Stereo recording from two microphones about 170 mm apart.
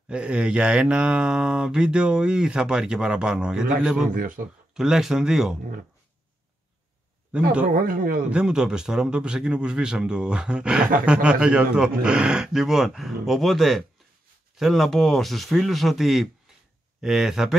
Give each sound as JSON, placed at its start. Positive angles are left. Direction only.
{"t": 0.1, "sound": "speech", "side_deg": -5}
{"t": 4.1, "sound": "speech", "side_deg": -55}
{"t": 4.7, "sound": "speech", "side_deg": -5}
{"t": 7.6, "sound": "speech", "side_deg": -55}
{"t": 8.3, "sound": "speech", "side_deg": -5}